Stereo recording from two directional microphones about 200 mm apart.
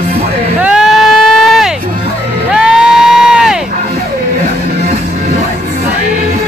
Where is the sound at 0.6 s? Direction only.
5° right (ahead or behind).